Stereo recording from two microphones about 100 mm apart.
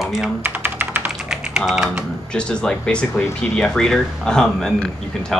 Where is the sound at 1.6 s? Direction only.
5° right (ahead or behind).